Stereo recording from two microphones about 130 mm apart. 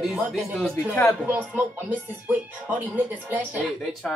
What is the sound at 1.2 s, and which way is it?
Speech, 15° right (ahead or behind).